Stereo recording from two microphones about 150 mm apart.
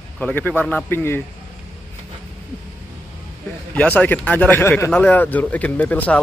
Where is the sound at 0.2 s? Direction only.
10° left (ahead or behind).